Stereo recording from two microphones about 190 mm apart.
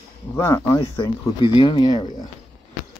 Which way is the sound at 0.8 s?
25° left (ahead or behind).